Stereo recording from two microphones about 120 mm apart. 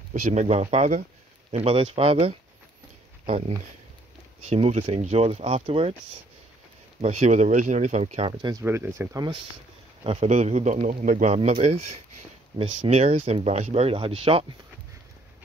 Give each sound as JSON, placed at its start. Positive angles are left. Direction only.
{"t": 0.1, "sound": "a man's voice", "side_deg": -75}
{"t": 1.5, "sound": "speech", "side_deg": -55}
{"t": 7.0, "sound": "a man's voice", "side_deg": -65}
{"t": 8.0, "sound": "speech", "side_deg": -55}
{"t": 8.4, "sound": "speech", "side_deg": -35}
{"t": 8.6, "sound": "speech", "side_deg": -20}
{"t": 9.1, "sound": "speech", "side_deg": -40}
{"t": 10.0, "sound": "a man's voice", "side_deg": -65}
{"t": 12.5, "sound": "speech", "side_deg": -55}